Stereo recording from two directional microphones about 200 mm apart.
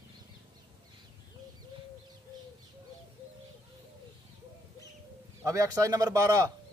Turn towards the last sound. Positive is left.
turn(degrees=-15)  # may be behind; listen again after turning